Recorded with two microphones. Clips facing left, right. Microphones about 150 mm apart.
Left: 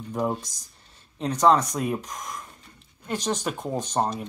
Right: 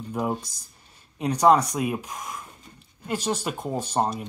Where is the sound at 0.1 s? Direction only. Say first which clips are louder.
Left 1 dB; 5° right (ahead or behind).